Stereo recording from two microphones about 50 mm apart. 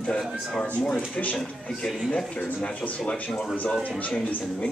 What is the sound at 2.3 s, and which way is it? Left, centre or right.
Speech, left.